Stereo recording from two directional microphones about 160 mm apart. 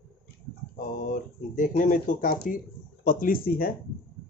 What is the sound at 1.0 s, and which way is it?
Speech, 55° left (ahead or behind).